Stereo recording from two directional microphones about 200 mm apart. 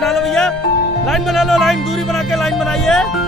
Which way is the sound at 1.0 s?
Centre (ahead or behind).